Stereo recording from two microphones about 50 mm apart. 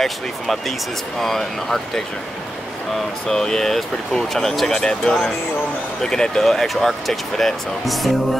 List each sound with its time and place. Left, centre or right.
0.0 s speech: centre
3.3 s speech: centre